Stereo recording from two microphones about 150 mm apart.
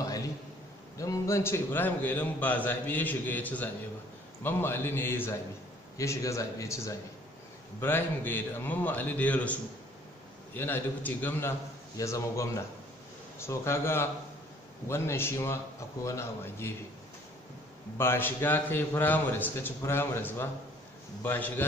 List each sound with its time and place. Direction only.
0.9 s a man's voice: 20° left (ahead or behind)
17.9 s a man's voice: 15° left (ahead or behind)